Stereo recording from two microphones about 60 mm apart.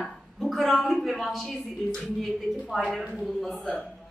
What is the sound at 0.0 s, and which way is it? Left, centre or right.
A woman's voice, centre.